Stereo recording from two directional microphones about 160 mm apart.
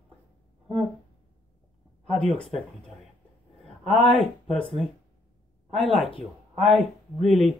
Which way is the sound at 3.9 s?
35° left (ahead or behind).